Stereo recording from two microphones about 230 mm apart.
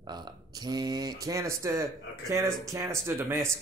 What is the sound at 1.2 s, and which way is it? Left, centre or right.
Speech, centre.